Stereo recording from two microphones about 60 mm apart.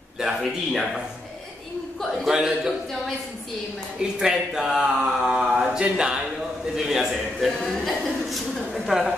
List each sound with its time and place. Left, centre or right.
0.2 s speech: centre
2.2 s a man's voice: centre
4.2 s a man's voice: centre